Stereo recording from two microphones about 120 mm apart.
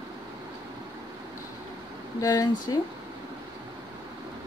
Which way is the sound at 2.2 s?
30° left (ahead or behind).